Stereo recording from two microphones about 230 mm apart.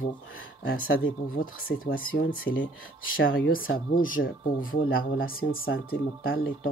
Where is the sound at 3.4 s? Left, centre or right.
Left.